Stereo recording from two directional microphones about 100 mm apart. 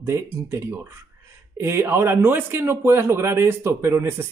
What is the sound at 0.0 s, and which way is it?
Speech, 25° right (ahead or behind).